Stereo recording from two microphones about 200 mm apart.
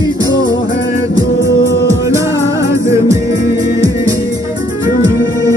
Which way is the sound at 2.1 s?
15° right (ahead or behind).